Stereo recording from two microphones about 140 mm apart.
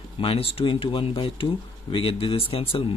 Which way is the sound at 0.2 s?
40° left (ahead or behind).